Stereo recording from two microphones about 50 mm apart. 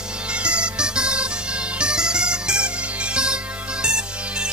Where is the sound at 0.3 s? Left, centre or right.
Right.